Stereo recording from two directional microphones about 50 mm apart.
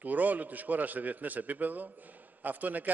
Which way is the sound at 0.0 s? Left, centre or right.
Right.